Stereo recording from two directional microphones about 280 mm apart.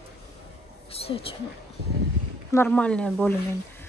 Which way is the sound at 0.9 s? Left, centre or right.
Centre.